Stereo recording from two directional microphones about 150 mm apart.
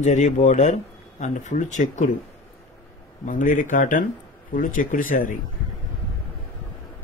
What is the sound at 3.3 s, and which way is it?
Speech, 60° left (ahead or behind).